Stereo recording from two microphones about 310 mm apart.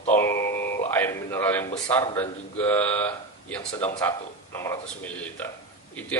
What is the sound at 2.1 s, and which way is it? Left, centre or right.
Speech, centre.